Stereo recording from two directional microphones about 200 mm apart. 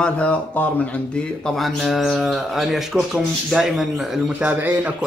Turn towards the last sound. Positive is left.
turn(degrees=-5)  # may be behind; listen again after turning